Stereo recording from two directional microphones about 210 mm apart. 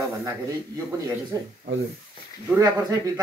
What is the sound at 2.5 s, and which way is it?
Speech, 15° right (ahead or behind).